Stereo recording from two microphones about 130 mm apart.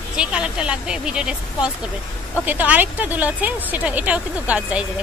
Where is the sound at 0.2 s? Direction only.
5° right (ahead or behind).